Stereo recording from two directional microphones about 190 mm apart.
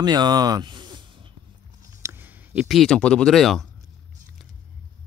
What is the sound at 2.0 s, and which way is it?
Speech, 10° right (ahead or behind).